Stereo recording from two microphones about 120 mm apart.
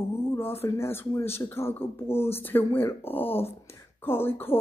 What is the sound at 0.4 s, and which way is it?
Speech, 20° left (ahead or behind).